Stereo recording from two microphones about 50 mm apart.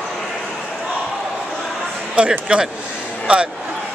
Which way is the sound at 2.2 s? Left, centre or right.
Right.